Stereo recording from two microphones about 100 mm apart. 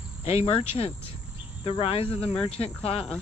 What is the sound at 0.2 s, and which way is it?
Speech, 80° left.